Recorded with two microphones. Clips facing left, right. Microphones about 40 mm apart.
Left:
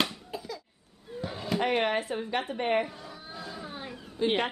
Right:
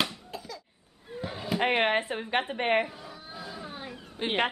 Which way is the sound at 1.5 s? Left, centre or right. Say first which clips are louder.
Right 2 dB; right.